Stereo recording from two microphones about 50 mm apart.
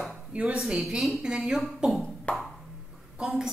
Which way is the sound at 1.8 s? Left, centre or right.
Right.